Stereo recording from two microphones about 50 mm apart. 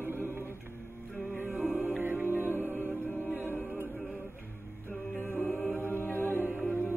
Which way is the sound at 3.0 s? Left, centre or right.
Left.